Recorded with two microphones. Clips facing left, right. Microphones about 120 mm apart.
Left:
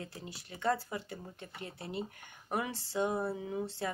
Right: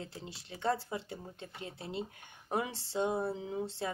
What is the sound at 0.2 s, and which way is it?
A woman's voice, 25° right (ahead or behind).